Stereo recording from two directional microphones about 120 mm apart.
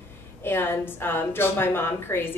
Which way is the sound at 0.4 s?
20° left (ahead or behind).